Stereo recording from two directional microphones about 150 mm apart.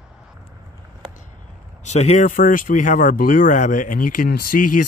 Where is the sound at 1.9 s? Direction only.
50° left (ahead or behind).